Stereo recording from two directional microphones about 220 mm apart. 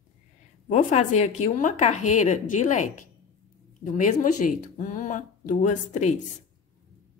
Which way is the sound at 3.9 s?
35° left (ahead or behind).